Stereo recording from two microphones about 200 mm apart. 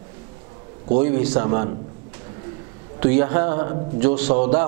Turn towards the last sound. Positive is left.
turn(degrees=-10)  # may be behind; listen again after turning